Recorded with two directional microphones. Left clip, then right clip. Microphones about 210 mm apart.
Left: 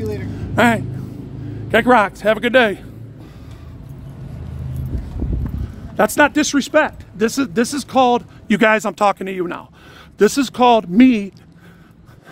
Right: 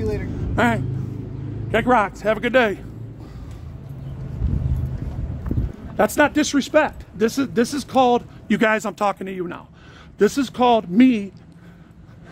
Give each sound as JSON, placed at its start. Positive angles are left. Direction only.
{"t": 0.2, "sound": "speech", "side_deg": 40}
{"t": 5.9, "sound": "speech", "side_deg": 40}